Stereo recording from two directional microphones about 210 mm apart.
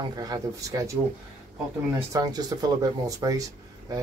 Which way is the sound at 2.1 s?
20° right (ahead or behind).